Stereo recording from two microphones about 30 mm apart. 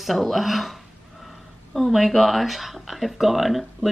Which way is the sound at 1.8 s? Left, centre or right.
Centre.